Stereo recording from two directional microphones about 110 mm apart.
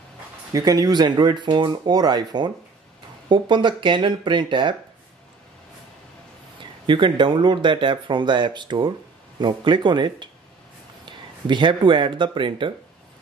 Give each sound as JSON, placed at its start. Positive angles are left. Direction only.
{"t": 0.5, "sound": "speech", "side_deg": -35}
{"t": 6.6, "sound": "speech", "side_deg": -45}